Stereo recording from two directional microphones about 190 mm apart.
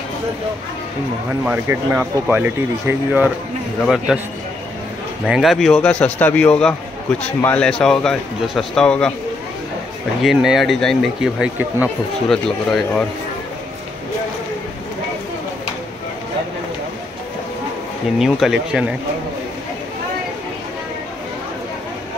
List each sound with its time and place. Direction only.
1.4 s a man's voice: 10° right (ahead or behind)
5.2 s a man's voice: centre (ahead or behind)
10.2 s a man's voice: centre (ahead or behind)
18.2 s a man's voice: centre (ahead or behind)